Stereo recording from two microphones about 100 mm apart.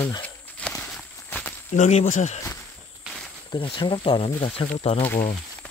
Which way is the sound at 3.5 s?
55° left (ahead or behind).